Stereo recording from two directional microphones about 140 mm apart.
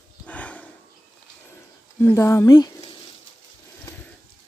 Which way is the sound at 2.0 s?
20° left (ahead or behind).